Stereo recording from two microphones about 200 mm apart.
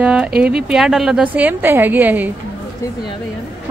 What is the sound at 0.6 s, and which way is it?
A woman's voice, 5° right (ahead or behind).